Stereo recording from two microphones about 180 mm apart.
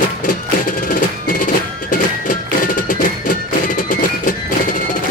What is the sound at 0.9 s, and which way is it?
Music, 50° left (ahead or behind).